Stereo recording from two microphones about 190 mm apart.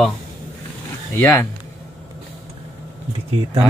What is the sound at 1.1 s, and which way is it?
Speech, 10° left (ahead or behind).